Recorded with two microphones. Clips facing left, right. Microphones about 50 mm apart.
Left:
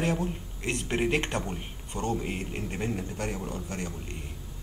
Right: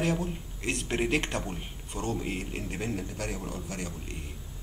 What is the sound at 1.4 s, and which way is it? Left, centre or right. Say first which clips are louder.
A man's voice: left 1 dB; centre.